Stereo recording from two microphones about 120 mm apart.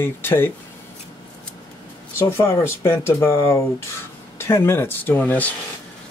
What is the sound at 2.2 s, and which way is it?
Speech, 25° left (ahead or behind).